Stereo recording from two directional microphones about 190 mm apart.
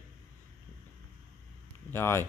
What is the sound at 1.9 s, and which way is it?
Speech, 15° left (ahead or behind).